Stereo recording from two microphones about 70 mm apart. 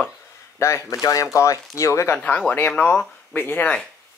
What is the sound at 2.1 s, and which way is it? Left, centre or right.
Speech, centre.